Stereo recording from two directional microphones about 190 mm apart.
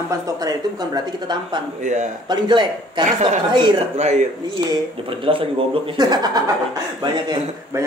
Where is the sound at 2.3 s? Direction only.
25° right (ahead or behind).